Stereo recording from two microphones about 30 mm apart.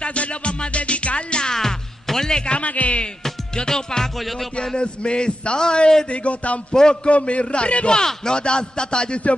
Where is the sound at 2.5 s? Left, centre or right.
Left.